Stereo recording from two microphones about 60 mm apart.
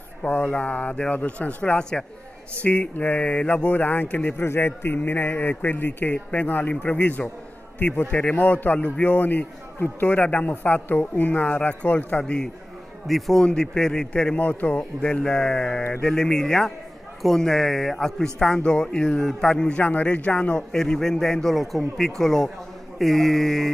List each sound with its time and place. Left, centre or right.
0.2 s a man's voice: left
4.4 s a man's voice: left
12.2 s speech: centre
13.0 s speech: centre
14.3 s a man's voice: left
15.0 s speech: centre